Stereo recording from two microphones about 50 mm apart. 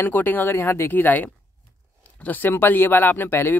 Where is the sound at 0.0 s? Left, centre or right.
Left.